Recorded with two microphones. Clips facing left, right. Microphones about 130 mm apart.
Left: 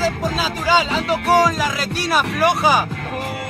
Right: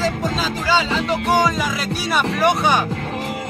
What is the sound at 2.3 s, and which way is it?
Music, centre (ahead or behind).